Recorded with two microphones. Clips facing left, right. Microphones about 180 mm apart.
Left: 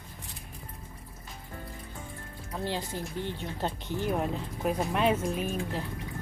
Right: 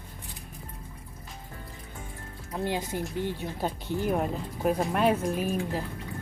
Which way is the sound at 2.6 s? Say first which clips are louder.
Right 4 dB; 15° right (ahead or behind).